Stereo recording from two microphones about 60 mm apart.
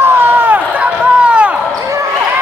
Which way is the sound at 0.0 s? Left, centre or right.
Right.